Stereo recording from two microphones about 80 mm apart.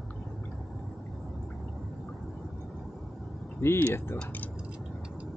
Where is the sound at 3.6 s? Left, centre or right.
Left.